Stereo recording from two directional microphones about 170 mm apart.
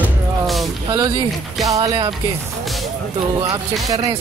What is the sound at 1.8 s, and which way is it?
Speech, 25° right (ahead or behind).